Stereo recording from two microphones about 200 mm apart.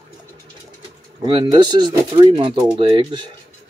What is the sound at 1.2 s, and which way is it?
Speech, 25° right (ahead or behind).